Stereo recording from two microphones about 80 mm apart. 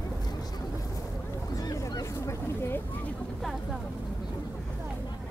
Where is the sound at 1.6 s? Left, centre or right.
Left.